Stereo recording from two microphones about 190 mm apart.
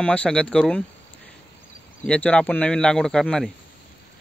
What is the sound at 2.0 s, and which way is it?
A man's voice, 5° left (ahead or behind).